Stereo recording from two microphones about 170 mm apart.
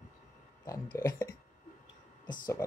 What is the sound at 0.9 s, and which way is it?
Speech, 20° left (ahead or behind).